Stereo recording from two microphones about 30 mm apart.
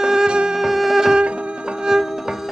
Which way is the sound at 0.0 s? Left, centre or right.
Right.